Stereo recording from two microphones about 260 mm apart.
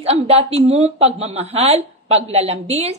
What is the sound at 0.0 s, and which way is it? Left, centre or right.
A woman's voice, right.